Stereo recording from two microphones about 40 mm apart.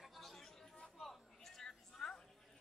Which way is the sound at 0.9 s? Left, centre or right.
Centre.